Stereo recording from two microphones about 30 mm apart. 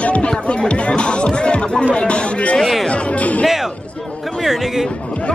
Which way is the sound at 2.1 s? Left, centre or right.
Left.